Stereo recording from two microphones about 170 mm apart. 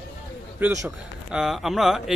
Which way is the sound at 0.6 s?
5° right (ahead or behind).